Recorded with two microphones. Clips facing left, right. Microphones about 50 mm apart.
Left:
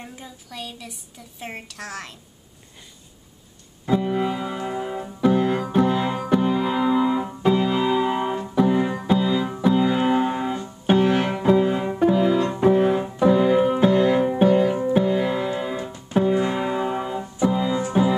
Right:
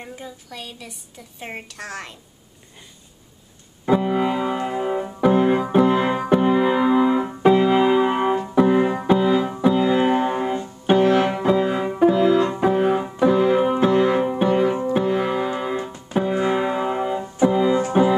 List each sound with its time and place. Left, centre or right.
0.0 s a woman's voice: centre
3.8 s keyboard: right; by 10.7 s centre
11.2 s music: centre
17.4 s keyboard: right